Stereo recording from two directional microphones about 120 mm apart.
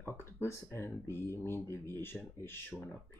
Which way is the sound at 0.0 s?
20° left (ahead or behind).